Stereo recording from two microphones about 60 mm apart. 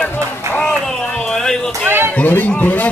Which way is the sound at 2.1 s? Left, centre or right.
Left.